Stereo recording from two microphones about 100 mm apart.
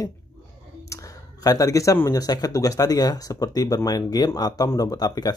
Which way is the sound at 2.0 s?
40° left (ahead or behind).